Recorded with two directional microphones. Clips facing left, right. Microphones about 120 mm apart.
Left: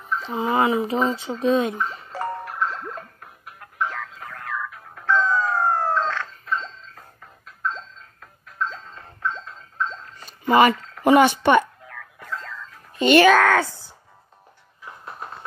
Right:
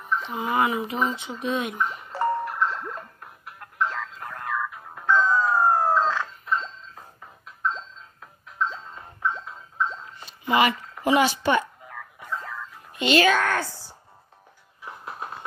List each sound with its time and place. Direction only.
0.0 s a sound: centre (ahead or behind)
0.6 s speech: 30° left (ahead or behind)
2.0 s music: centre (ahead or behind)
4.3 s music: 15° right (ahead or behind)
10.2 s a sound: 45° left (ahead or behind)
10.8 s a sound: 10° right (ahead or behind)
11.1 s speech: 55° left (ahead or behind)
11.9 s music: 15° right (ahead or behind)
13.1 s speech: 90° left